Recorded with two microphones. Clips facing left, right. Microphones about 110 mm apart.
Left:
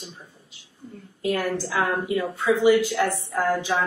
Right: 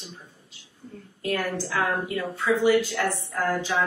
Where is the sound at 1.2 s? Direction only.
15° left (ahead or behind).